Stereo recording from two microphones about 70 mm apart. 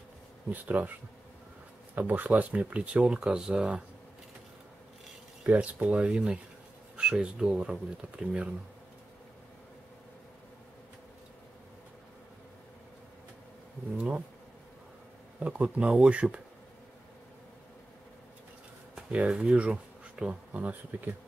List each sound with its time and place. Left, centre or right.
0.5 s speech: right
2.0 s speech: right
5.4 s speech: centre
13.9 s speech: centre
15.4 s speech: centre
18.9 s speech: centre